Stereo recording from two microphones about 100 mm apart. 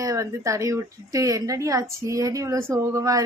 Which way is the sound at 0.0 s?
30° right (ahead or behind).